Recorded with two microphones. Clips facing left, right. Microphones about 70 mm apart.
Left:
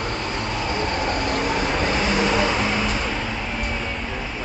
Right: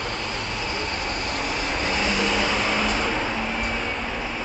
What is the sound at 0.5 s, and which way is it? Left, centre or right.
Vehicle, left.